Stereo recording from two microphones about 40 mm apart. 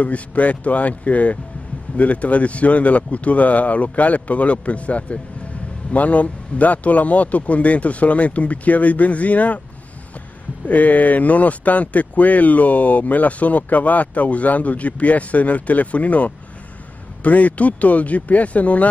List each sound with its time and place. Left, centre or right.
0.0 s speech: left
10.7 s speech: left